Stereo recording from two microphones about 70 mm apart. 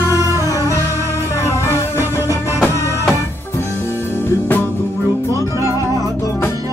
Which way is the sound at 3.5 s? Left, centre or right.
Left.